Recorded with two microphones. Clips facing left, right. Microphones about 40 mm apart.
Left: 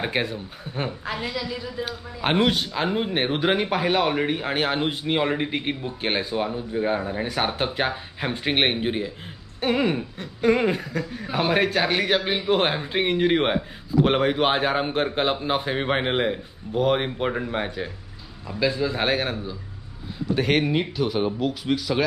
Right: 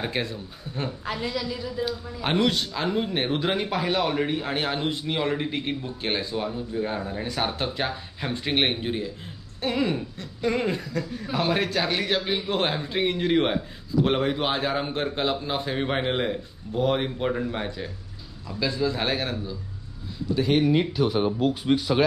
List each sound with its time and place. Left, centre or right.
0.0 s a man's voice: left
1.3 s a woman's voice: centre
2.2 s a man's voice: left
20.3 s speech: left